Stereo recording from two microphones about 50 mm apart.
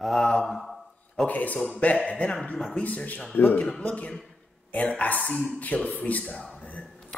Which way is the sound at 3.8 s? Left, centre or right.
Left.